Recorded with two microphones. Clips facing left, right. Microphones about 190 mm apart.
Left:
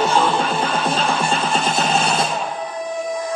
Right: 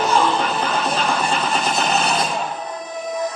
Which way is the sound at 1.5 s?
25° left (ahead or behind).